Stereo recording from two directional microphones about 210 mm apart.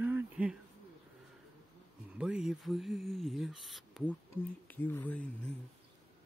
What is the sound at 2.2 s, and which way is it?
Speech, 5° right (ahead or behind).